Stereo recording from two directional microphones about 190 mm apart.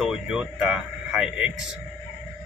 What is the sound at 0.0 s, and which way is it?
Speech, centre (ahead or behind).